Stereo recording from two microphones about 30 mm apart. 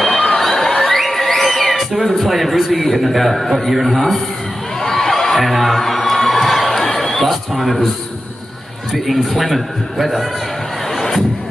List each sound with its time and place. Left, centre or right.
0.1 s a sound: left
0.4 s music: centre
3.5 s a man's voice: centre
4.8 s crowd: centre
8.9 s a man's voice: centre
11.0 s music: centre